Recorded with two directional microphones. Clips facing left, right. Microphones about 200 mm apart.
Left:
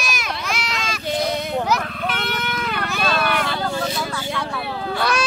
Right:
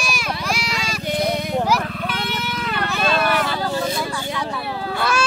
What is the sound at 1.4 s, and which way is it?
Vehicle, 10° right (ahead or behind).